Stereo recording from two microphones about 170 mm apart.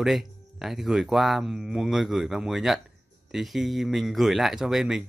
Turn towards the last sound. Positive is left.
turn(degrees=-5)  # may be behind; listen again after turning